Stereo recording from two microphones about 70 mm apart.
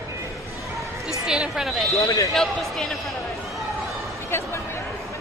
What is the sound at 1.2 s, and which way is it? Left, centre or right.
Speech, centre.